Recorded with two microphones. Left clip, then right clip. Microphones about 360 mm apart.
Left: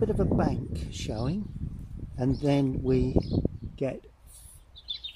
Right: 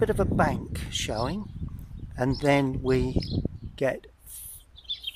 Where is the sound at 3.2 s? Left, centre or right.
Left.